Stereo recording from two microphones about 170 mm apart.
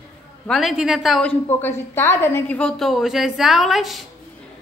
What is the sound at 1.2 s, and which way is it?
A woman's voice, 10° left (ahead or behind).